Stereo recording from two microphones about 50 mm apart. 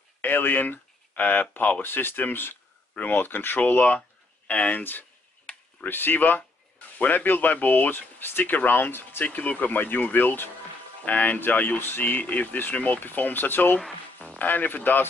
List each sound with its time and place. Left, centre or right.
0.2 s speech: left
5.9 s speech: left
11.1 s speech: left